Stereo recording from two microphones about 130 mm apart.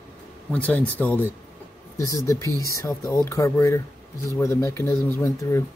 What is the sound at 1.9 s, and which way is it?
Speech, 25° left (ahead or behind).